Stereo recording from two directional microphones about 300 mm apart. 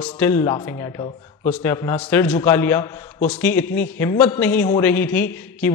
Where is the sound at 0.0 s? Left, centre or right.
Centre.